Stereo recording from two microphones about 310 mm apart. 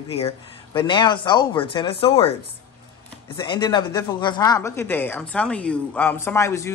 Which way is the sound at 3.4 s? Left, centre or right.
Centre.